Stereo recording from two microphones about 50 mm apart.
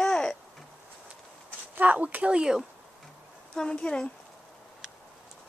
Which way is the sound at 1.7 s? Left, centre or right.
Right.